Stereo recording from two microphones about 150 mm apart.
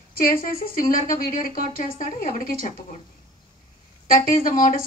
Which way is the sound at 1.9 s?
55° left (ahead or behind).